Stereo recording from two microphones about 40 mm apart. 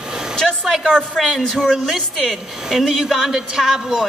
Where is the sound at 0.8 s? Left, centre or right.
Centre.